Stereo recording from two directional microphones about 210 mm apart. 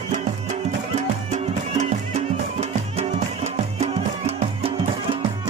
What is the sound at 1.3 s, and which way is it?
Music, 35° right (ahead or behind).